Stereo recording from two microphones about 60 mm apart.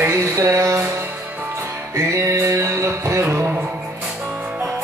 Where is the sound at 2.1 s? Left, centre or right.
Right.